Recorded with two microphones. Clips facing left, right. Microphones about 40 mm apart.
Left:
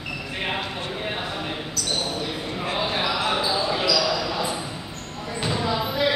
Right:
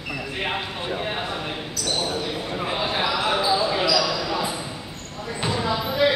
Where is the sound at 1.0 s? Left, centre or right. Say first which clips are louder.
Right 1 dB; centre.